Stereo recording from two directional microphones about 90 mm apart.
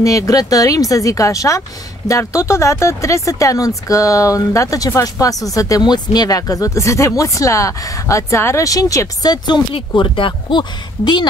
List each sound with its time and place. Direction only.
0.0 s speech: 40° left (ahead or behind)
9.8 s speech: 65° left (ahead or behind)